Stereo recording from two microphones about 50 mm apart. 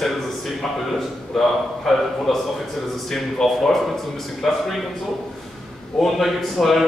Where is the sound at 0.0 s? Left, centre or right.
Centre.